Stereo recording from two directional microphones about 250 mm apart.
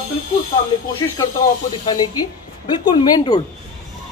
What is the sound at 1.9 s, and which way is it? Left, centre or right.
Speech, centre.